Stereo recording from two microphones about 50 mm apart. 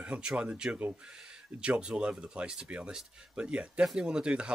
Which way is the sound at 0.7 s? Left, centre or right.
Right.